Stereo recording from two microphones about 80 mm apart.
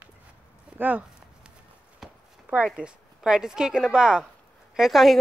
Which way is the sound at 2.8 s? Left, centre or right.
Centre.